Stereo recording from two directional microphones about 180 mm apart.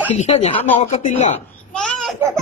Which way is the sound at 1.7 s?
5° left (ahead or behind).